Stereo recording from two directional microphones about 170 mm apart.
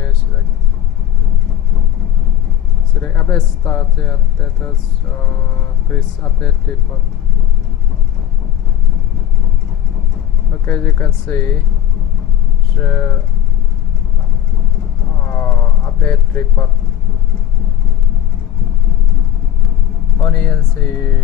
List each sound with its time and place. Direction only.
3.0 s speech: 15° left (ahead or behind)
5.9 s speech: 15° left (ahead or behind)
10.5 s speech: 15° left (ahead or behind)
12.7 s speech: 15° left (ahead or behind)
15.1 s a sound: 15° left (ahead or behind)
20.2 s speech: 15° left (ahead or behind)